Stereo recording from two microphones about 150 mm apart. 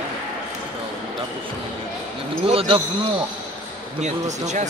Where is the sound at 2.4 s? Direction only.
40° right (ahead or behind).